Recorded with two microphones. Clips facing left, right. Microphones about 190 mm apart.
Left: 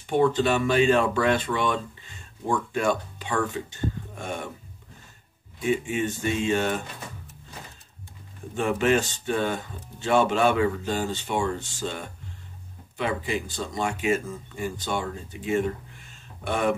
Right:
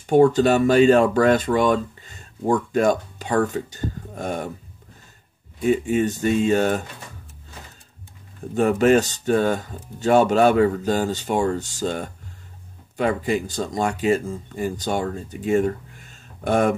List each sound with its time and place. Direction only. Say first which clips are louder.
0.0 s speech: right 7 dB; 40° right (ahead or behind)
5.6 s speech: right 6 dB; 40° right (ahead or behind)
8.5 s speech: right 6 dB; 40° right (ahead or behind)